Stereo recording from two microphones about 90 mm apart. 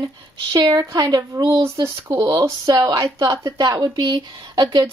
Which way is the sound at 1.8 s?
60° right (ahead or behind).